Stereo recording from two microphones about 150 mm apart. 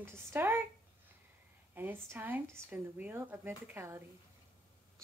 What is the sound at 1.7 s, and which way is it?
Speech, 15° right (ahead or behind).